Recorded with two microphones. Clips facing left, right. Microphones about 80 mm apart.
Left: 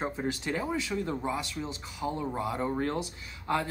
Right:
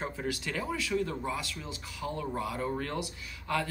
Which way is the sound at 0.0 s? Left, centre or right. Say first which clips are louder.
Left 3 dB; left.